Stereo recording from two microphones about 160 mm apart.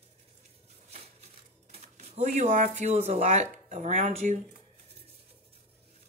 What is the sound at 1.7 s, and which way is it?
Speech, 40° right (ahead or behind).